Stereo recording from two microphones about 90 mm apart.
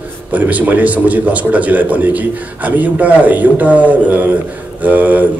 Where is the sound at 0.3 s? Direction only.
15° right (ahead or behind).